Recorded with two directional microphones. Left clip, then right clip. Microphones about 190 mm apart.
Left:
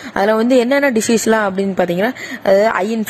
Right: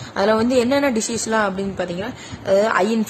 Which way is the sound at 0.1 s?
35° left (ahead or behind).